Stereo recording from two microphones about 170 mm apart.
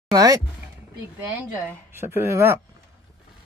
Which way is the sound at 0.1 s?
20° right (ahead or behind).